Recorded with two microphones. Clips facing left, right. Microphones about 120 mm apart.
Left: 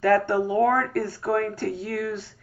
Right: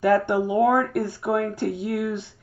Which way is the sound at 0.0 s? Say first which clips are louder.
Right 1 dB; 15° right (ahead or behind).